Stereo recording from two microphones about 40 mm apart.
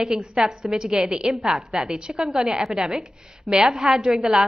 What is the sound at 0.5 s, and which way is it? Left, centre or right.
A woman's voice, centre.